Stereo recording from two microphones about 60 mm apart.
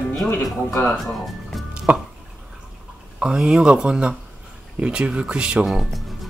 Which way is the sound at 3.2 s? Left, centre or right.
Centre.